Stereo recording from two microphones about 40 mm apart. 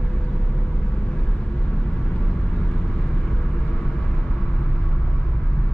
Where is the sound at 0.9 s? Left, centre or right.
Centre.